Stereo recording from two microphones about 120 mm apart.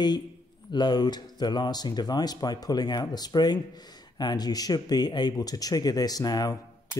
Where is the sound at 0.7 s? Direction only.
35° left (ahead or behind).